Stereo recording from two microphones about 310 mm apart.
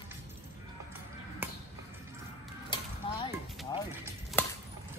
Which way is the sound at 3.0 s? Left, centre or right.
Centre.